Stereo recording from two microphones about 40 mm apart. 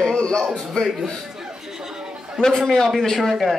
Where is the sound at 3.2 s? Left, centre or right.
Centre.